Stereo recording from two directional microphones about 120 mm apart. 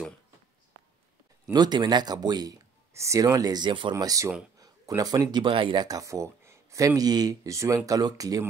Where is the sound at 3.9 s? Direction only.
30° right (ahead or behind).